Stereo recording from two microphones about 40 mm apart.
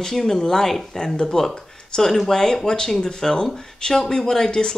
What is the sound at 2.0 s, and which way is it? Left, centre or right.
Speech, centre.